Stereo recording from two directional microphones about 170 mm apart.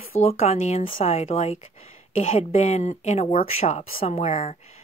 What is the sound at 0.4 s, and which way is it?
A woman's voice, 40° left (ahead or behind).